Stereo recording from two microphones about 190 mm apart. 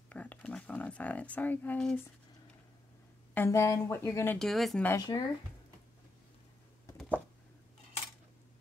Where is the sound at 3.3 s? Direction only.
15° left (ahead or behind).